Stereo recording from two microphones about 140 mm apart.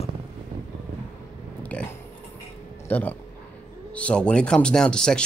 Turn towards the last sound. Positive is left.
turn(degrees=5)  # may be behind; listen again after turning